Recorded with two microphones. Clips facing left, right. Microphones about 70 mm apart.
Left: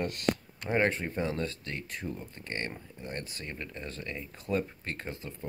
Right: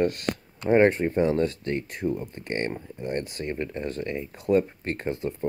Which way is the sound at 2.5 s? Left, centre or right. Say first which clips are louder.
Right 8 dB; right.